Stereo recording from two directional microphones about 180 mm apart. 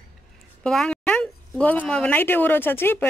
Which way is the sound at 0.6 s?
5° left (ahead or behind).